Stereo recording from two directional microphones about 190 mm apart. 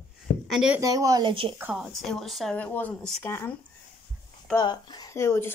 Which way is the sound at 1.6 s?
10° right (ahead or behind).